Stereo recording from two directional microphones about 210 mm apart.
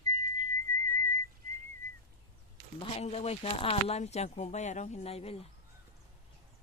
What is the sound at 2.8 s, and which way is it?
Speech, 30° left (ahead or behind).